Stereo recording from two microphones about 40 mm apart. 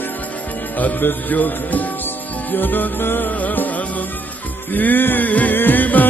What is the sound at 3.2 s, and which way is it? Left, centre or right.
Music, left.